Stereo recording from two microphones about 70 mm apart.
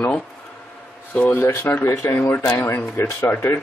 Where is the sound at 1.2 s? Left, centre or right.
Left.